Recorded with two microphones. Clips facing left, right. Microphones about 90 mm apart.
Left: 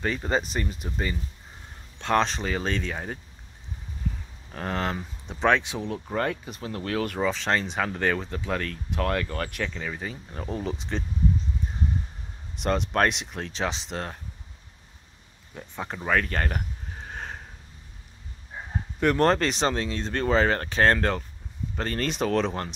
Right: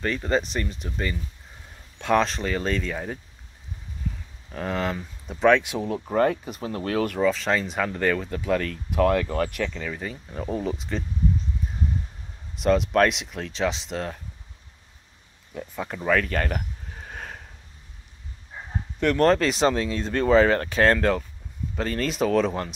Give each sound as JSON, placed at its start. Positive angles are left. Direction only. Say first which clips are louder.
{"t": 0.0, "sound": "speech", "louder": "right 2 dB", "side_deg": 5}
{"t": 2.0, "sound": "speech", "louder": "right 2 dB", "side_deg": -5}
{"t": 4.5, "sound": "speech", "louder": "right 2 dB", "side_deg": 0}
{"t": 12.5, "sound": "speech", "louder": "right 5 dB", "side_deg": 0}
{"t": 15.5, "sound": "speech", "louder": "right 3 dB", "side_deg": 5}
{"t": 18.9, "sound": "speech", "louder": "right 2 dB", "side_deg": 5}